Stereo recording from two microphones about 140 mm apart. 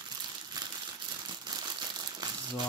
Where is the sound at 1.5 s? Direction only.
30° right (ahead or behind).